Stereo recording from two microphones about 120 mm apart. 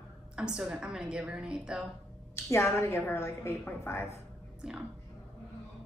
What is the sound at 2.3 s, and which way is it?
A woman's voice, 20° left (ahead or behind).